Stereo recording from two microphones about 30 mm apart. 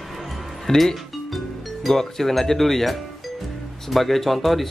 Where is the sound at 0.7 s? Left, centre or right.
Centre.